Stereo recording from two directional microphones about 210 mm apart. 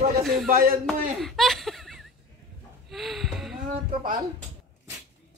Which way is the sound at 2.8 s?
Centre (ahead or behind).